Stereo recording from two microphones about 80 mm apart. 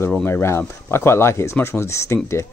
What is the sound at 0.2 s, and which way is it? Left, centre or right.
Speech, left.